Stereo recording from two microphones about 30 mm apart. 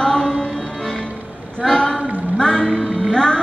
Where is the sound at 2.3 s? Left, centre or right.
Left.